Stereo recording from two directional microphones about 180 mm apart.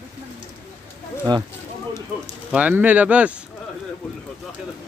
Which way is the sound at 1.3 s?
25° right (ahead or behind).